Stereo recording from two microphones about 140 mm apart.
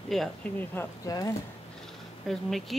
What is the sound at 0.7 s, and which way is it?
Speech, 15° left (ahead or behind).